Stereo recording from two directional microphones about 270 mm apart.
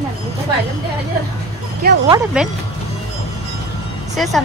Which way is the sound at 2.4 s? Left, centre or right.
Centre.